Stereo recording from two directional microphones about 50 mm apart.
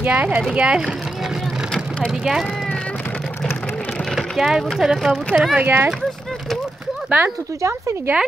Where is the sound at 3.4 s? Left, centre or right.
Centre.